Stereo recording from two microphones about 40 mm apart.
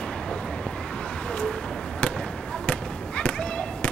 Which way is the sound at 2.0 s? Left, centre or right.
Left.